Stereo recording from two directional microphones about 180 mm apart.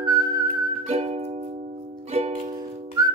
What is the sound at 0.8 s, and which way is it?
Music, 35° right (ahead or behind).